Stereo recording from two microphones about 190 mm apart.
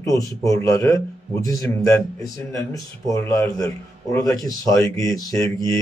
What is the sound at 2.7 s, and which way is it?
A man's voice, 15° left (ahead or behind).